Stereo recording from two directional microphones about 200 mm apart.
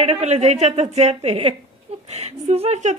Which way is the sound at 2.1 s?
30° right (ahead or behind).